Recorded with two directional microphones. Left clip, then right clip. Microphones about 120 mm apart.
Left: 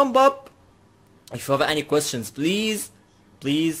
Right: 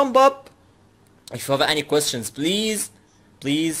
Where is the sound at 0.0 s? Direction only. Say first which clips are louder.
Right 1 dB; 35° left (ahead or behind).